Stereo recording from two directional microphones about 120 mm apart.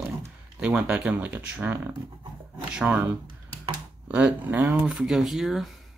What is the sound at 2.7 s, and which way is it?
Speech, 10° right (ahead or behind).